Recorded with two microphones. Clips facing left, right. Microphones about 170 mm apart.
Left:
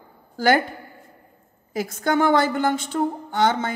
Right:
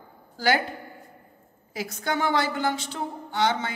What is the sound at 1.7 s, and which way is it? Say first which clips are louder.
A woman's voice: left 6 dB; 50° left (ahead or behind).